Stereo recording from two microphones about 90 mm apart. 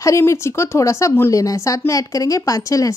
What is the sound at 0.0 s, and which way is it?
A woman's voice, 35° left (ahead or behind).